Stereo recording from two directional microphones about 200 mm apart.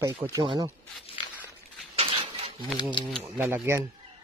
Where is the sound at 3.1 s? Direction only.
10° right (ahead or behind).